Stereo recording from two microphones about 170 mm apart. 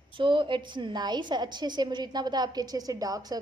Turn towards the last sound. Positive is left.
turn(degrees=-20)  # may be behind; listen again after turning